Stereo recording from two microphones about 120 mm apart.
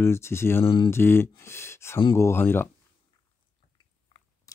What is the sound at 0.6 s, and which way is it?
Speech, 40° left (ahead or behind).